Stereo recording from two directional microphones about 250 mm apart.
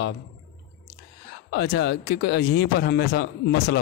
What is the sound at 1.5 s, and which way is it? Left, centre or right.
A man's voice, left.